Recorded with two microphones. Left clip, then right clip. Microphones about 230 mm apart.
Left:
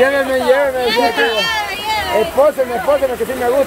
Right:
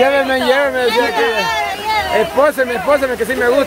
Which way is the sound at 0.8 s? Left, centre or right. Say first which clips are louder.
Even; centre.